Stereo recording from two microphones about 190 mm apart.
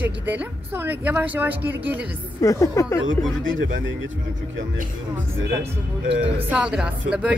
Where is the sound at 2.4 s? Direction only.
15° left (ahead or behind).